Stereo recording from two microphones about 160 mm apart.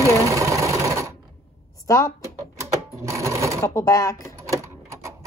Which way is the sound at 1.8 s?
20° left (ahead or behind).